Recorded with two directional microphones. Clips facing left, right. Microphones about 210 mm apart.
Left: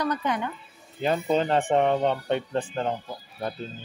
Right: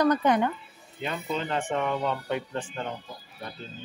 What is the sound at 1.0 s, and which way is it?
Speech, 40° left (ahead or behind).